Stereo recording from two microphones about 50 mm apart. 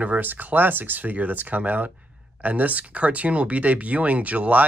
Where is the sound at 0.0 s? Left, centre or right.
Right.